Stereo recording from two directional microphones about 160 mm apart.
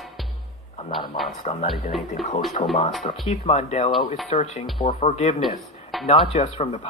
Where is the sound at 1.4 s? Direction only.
45° left (ahead or behind).